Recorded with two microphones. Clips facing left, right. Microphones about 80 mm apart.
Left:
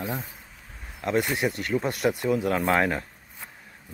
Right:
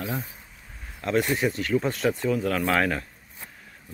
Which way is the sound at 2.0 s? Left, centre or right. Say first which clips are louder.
Even; centre.